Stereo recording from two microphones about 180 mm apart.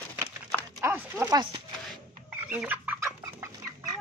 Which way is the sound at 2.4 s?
10° right (ahead or behind).